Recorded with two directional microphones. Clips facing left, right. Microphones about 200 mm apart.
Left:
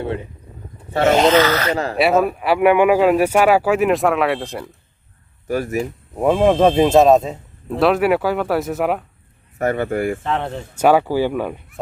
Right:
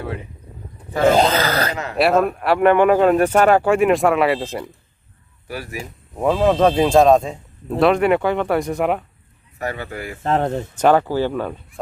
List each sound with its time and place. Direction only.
1.0 s speech: 35° right (ahead or behind)
2.0 s speech: centre (ahead or behind)
5.5 s speech: 45° left (ahead or behind)
6.1 s speech: 10° left (ahead or behind)
9.6 s speech: 50° left (ahead or behind)
10.2 s speech: 40° right (ahead or behind)
10.8 s speech: 10° left (ahead or behind)